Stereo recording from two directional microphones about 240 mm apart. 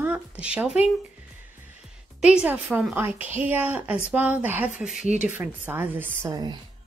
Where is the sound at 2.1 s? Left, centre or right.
Centre.